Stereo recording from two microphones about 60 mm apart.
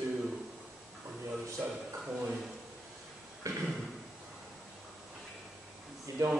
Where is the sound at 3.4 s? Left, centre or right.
Right.